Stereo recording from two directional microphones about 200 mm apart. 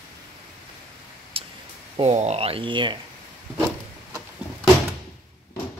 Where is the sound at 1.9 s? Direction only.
35° right (ahead or behind).